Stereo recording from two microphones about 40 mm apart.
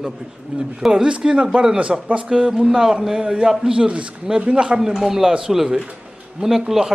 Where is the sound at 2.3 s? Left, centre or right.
Centre.